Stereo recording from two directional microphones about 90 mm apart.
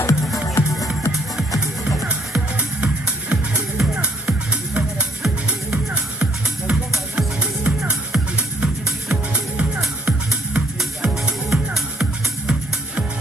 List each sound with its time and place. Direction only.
0.0 s music: 35° left (ahead or behind)
2.0 s music: 15° right (ahead or behind)